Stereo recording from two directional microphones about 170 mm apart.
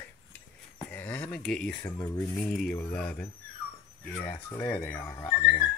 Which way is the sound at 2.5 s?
5° left (ahead or behind).